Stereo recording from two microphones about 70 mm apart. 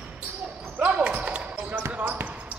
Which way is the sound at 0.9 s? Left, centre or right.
Centre.